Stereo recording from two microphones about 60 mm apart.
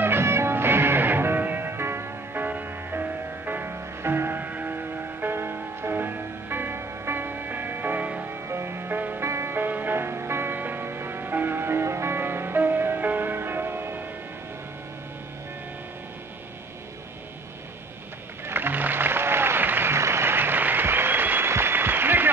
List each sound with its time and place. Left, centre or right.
0.0 s music: right
8.3 s music: right
9.2 s music: right
18.5 s music: right